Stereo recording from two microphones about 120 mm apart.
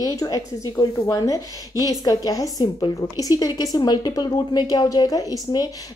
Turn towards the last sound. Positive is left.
turn(degrees=30)  # may be behind; listen again after turning